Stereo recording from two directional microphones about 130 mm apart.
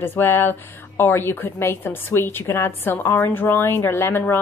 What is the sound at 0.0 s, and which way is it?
A woman's voice, 15° left (ahead or behind).